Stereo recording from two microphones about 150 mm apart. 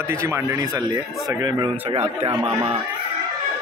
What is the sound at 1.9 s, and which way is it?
Speech, 40° right (ahead or behind).